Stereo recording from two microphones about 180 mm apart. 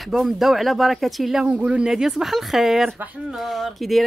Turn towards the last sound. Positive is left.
turn(degrees=0)  # may be behind; listen again after turning